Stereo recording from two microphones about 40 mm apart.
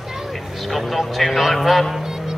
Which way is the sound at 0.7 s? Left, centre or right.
Centre.